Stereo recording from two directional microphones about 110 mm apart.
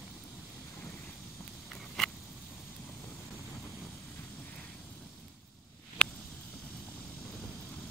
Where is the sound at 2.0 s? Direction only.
Centre (ahead or behind).